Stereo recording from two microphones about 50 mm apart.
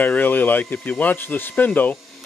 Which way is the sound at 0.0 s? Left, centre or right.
Left.